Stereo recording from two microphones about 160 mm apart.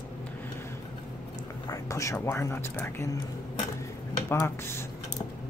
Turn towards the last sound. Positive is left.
turn(degrees=15)  # may be behind; listen again after turning